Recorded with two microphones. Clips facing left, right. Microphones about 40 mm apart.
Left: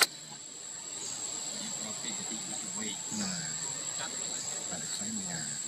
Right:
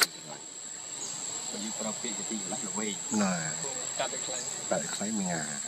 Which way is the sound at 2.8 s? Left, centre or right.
Right.